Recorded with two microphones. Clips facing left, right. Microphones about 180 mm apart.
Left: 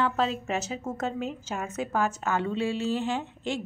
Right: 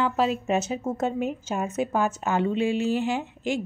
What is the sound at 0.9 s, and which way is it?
A woman's voice, 25° right (ahead or behind).